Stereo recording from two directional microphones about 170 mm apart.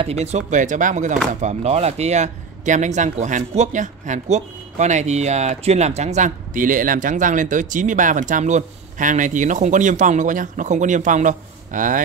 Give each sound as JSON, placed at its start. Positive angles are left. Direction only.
{"t": 0.0, "sound": "speech", "side_deg": -40}